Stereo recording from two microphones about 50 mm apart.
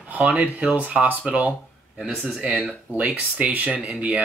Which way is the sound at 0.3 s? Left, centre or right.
Right.